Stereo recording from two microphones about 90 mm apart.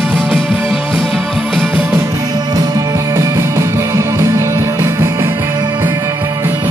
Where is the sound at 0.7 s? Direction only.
5° right (ahead or behind).